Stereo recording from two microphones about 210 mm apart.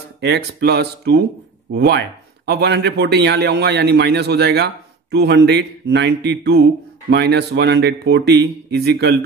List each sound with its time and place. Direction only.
0.2 s speech: 50° right (ahead or behind)